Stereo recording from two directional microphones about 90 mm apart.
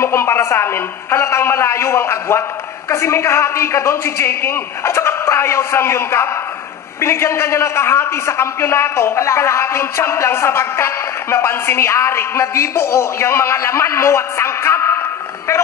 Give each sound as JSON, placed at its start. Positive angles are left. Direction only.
{"t": 0.0, "sound": "a man's voice", "side_deg": 30}